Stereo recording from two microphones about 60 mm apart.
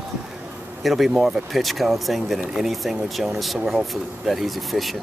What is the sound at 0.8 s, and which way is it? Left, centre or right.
Speech, centre.